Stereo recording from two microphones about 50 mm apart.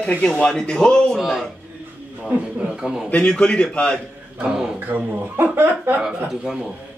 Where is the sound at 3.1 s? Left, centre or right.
Left.